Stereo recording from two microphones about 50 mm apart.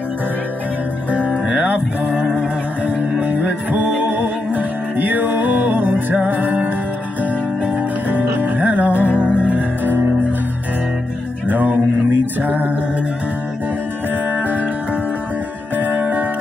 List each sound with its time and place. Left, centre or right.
1.1 s music: right
11.4 s music: right
14.3 s music: right
15.7 s music: right